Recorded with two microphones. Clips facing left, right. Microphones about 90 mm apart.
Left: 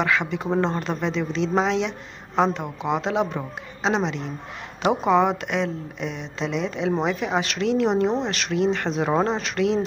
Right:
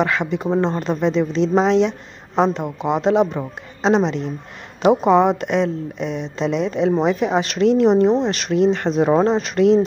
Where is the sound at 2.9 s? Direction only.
35° right (ahead or behind).